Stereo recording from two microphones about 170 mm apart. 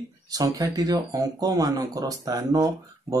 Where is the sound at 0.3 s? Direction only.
20° right (ahead or behind).